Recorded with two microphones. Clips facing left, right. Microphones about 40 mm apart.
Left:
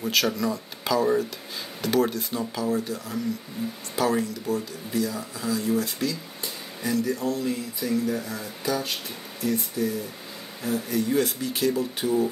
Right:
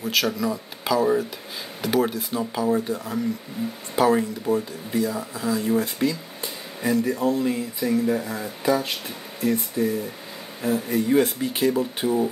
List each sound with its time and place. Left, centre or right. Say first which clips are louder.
0.0 s speech: right 1 dB; centre
2.6 s speech: right 5 dB; right